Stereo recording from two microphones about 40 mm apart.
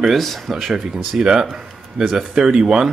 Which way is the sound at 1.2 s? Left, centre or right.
Centre.